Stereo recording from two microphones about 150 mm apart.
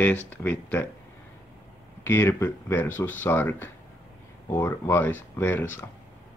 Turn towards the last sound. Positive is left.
turn(degrees=15)  # may be behind; listen again after turning